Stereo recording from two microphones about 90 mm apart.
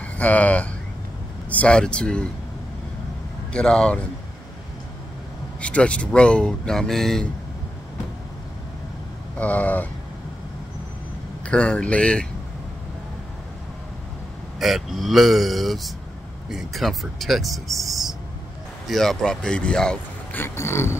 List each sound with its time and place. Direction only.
0.0 s speech: 15° left (ahead or behind)
3.5 s speech: 10° left (ahead or behind)
5.6 s speech: 15° left (ahead or behind)
9.4 s speech: 15° left (ahead or behind)
11.4 s speech: 15° left (ahead or behind)
14.6 s speech: centre (ahead or behind)
20.3 s a sound: 30° left (ahead or behind)